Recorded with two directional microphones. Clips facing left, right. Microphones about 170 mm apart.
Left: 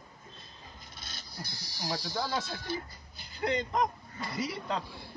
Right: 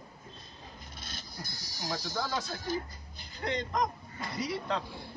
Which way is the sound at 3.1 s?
Centre (ahead or behind).